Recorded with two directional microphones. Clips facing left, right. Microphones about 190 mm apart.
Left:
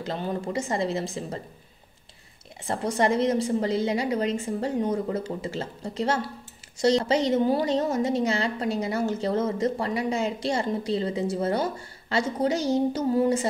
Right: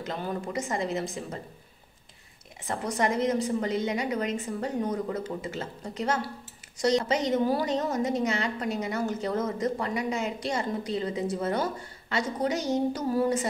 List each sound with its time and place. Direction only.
0.0 s a woman's voice: 30° left (ahead or behind)
2.6 s a woman's voice: 30° left (ahead or behind)